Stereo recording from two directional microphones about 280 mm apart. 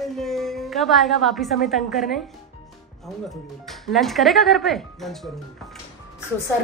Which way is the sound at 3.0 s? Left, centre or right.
Centre.